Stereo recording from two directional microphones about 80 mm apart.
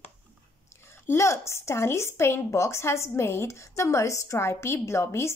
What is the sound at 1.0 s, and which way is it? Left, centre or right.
Speech, left.